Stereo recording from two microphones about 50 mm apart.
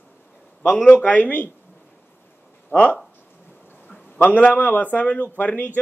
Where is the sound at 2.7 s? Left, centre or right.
Left.